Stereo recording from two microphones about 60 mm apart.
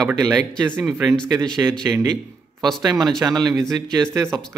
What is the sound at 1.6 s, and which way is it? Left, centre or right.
Speech, right.